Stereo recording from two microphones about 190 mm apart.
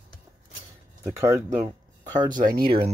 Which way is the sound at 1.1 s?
15° right (ahead or behind).